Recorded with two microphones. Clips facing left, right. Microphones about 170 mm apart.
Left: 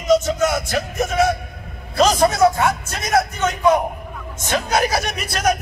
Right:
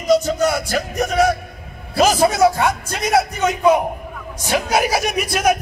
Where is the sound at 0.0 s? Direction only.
35° right (ahead or behind).